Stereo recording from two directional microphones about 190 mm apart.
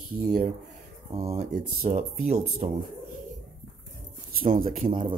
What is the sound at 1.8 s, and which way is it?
Speech, 40° right (ahead or behind).